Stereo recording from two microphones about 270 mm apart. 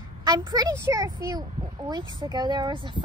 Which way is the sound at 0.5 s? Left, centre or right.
Centre.